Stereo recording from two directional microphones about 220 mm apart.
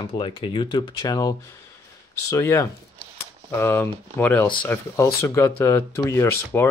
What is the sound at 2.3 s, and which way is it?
Speech, 15° left (ahead or behind).